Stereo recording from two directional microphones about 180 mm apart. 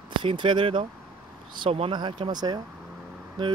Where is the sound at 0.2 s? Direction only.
25° right (ahead or behind).